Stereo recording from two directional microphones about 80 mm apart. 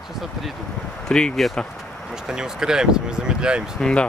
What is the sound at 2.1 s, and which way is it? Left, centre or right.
Speech, centre.